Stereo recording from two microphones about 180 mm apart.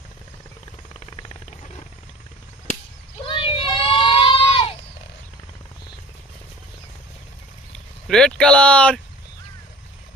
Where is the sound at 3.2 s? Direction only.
30° left (ahead or behind).